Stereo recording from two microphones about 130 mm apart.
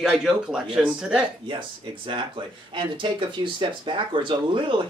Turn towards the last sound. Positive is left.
turn(degrees=-40)  # may be behind; listen again after turning